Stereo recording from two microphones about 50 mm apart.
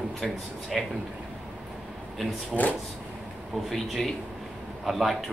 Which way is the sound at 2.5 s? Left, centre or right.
Right.